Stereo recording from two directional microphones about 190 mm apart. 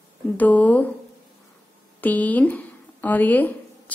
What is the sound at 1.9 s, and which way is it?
Speech, 10° left (ahead or behind).